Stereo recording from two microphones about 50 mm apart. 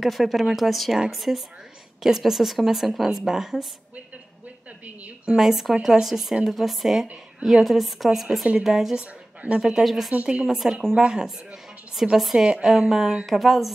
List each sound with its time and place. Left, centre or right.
0.0 s a woman's voice: centre
4.8 s a woman's voice: right
5.4 s a woman's voice: centre
12.2 s a woman's voice: centre